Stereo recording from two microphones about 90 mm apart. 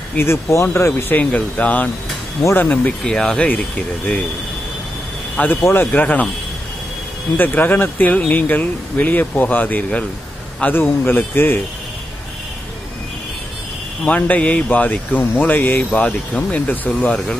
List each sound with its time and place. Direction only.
0.1 s speech: 25° left (ahead or behind)
3.0 s speech: 5° left (ahead or behind)
5.3 s speech: 15° left (ahead or behind)
5.6 s speech: 25° left (ahead or behind)
7.3 s speech: 20° left (ahead or behind)
14.0 s speech: 15° left (ahead or behind)